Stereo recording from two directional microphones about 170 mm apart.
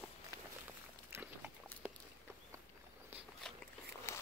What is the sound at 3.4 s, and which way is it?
Biting, 5° left (ahead or behind).